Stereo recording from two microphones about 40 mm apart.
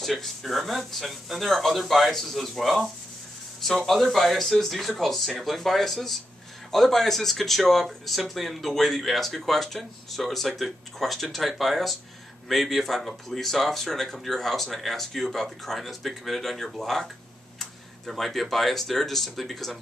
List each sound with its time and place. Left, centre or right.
0.0 s speech: centre